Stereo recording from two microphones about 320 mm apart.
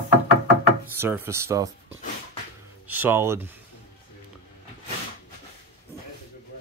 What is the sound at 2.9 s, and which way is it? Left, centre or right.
Speech, centre.